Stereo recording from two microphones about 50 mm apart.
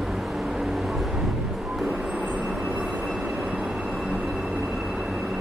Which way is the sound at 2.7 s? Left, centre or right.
Right.